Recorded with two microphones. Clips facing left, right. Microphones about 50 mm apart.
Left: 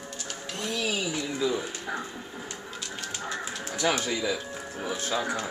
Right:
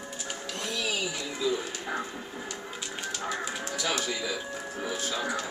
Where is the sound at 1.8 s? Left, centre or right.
Centre.